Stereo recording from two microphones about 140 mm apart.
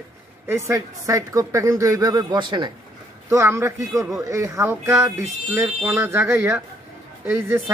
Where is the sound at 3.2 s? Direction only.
20° right (ahead or behind).